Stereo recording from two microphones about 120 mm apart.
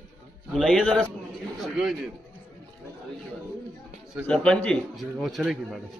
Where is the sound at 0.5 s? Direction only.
5° left (ahead or behind).